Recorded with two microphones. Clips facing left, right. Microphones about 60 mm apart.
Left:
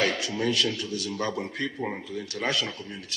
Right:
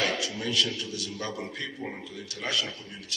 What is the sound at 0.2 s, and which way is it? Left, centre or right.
A man's voice, left.